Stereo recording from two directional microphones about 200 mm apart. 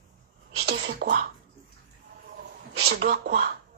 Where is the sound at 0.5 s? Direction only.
55° right (ahead or behind).